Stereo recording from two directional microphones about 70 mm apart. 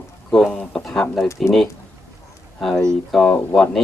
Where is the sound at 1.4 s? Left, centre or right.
Centre.